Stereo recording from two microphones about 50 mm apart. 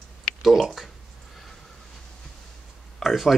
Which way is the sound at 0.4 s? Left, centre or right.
Centre.